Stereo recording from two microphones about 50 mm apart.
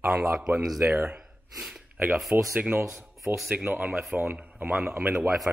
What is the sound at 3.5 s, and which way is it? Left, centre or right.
Speech, right.